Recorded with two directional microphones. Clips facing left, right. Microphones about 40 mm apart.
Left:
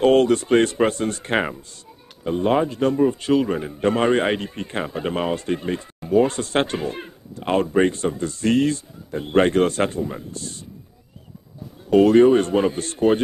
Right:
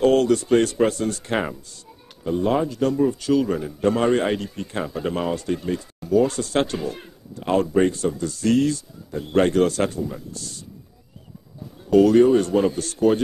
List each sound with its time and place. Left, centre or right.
0.0 s a man's voice: left
11.9 s a man's voice: left